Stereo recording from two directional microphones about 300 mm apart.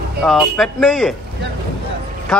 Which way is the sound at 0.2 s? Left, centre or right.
Centre.